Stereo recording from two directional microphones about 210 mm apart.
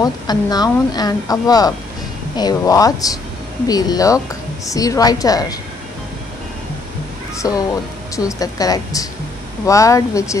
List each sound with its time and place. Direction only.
0.0 s a woman's voice: 20° left (ahead or behind)
7.3 s a woman's voice: 15° left (ahead or behind)